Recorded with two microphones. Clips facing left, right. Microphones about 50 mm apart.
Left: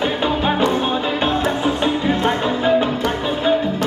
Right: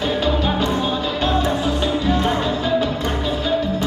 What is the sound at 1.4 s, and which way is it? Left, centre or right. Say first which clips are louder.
Music: left 2 dB; left.